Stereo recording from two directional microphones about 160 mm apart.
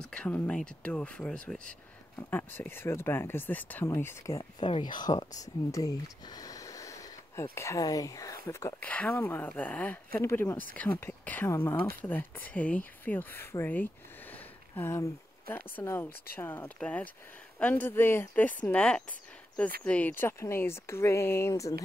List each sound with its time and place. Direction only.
0.0 s speech: 5° left (ahead or behind)